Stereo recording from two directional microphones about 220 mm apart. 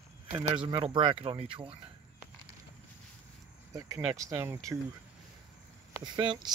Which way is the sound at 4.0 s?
10° right (ahead or behind).